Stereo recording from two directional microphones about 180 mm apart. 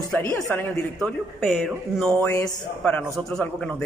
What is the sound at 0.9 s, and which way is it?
A woman's voice, centre (ahead or behind).